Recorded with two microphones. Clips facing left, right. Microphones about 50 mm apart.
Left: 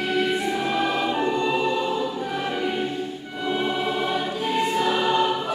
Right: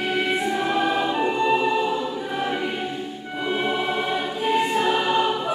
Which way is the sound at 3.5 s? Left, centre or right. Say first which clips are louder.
Even; centre.